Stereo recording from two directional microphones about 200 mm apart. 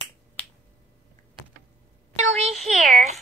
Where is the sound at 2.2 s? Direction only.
35° right (ahead or behind).